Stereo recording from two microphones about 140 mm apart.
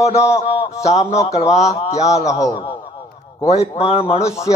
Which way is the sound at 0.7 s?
25° left (ahead or behind).